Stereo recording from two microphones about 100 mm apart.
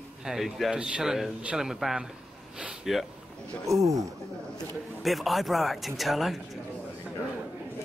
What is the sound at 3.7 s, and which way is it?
Speech, 30° right (ahead or behind).